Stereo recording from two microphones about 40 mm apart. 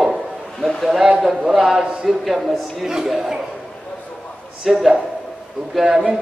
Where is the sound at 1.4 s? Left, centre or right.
Centre.